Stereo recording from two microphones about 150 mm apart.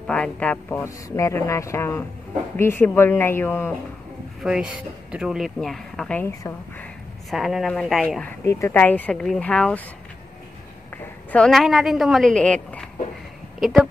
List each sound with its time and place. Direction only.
0.0 s speech: 5° left (ahead or behind)
4.4 s speech: 5° right (ahead or behind)
6.2 s speech: 15° left (ahead or behind)
7.2 s speech: centre (ahead or behind)
11.3 s speech: 5° left (ahead or behind)